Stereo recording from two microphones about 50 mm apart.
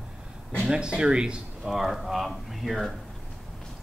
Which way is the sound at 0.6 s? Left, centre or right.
Centre.